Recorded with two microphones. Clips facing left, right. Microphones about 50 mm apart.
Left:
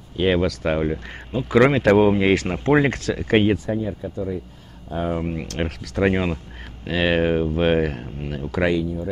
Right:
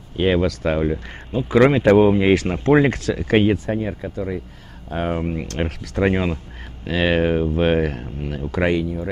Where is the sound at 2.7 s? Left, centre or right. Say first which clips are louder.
Right 2 dB; left.